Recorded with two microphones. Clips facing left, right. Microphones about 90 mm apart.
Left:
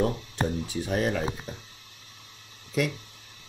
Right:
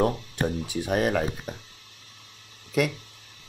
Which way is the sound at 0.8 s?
60° right (ahead or behind).